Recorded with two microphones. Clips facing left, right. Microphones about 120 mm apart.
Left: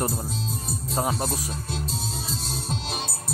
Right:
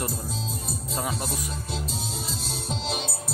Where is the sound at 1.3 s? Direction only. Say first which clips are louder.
Left 1 dB; centre (ahead or behind).